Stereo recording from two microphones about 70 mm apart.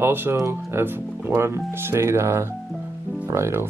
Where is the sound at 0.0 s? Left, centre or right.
Right.